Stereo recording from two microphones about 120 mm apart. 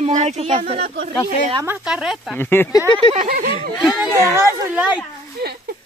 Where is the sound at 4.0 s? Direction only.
20° right (ahead or behind).